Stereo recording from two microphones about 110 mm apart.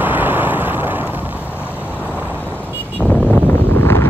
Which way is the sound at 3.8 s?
25° left (ahead or behind).